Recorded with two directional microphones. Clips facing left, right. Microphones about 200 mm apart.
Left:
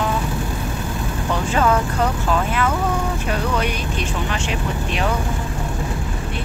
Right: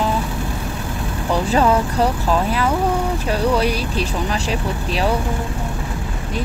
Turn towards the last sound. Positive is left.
turn(degrees=-35)  # may be behind; listen again after turning